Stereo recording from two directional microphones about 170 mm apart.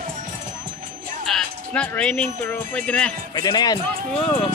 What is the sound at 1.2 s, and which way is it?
Speech, 5° left (ahead or behind).